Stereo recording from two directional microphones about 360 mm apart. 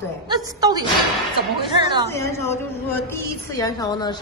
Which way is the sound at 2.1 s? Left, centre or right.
Centre.